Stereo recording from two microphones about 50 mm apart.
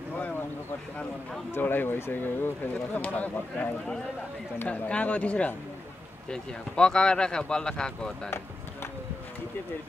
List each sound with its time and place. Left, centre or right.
1.6 s speech: left
2.9 s speech: left
4.6 s speech: left
6.3 s speech: centre